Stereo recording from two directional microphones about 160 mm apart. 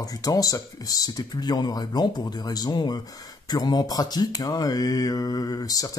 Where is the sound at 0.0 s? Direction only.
25° left (ahead or behind).